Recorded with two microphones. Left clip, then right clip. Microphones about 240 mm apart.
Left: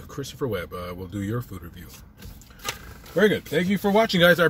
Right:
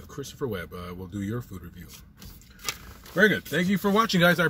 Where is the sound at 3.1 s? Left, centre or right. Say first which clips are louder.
Left 1 dB; right.